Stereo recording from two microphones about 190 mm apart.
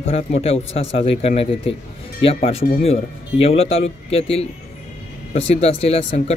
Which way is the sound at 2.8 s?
30° left (ahead or behind).